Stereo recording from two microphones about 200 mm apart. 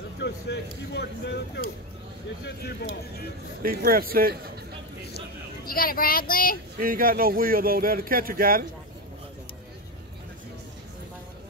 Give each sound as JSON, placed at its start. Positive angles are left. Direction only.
{"t": 0.2, "sound": "speech", "side_deg": 60}
{"t": 2.4, "sound": "speech", "side_deg": 55}
{"t": 3.6, "sound": "speech", "side_deg": -45}
{"t": 5.7, "sound": "speech", "side_deg": 45}
{"t": 6.8, "sound": "speech", "side_deg": -45}